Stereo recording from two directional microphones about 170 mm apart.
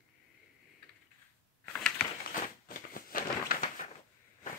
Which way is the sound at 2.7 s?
55° left (ahead or behind).